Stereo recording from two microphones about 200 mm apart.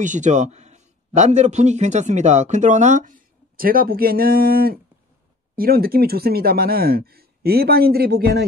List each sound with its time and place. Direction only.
0.0 s a man's voice: 40° right (ahead or behind)